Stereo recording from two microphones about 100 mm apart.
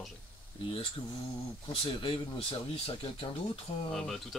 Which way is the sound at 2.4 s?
65° left (ahead or behind).